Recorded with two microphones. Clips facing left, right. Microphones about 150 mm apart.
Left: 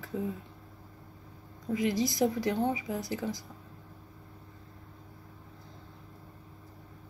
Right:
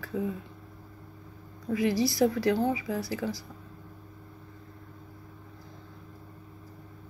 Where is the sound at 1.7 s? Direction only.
20° left (ahead or behind).